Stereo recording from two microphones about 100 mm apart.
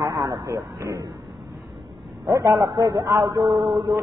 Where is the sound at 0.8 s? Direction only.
35° right (ahead or behind).